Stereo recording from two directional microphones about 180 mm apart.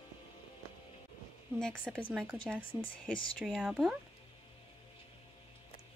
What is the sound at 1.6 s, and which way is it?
Speech, 5° left (ahead or behind).